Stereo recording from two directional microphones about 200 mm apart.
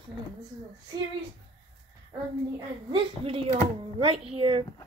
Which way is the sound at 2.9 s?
30° right (ahead or behind).